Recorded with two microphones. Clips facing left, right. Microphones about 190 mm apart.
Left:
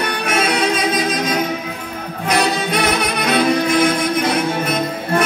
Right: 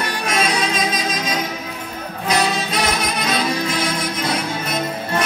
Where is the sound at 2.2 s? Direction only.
60° left (ahead or behind).